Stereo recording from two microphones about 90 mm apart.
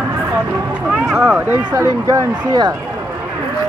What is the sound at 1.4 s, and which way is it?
Speech, 20° right (ahead or behind).